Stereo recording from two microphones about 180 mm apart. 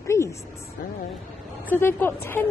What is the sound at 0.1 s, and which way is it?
Music, 15° left (ahead or behind).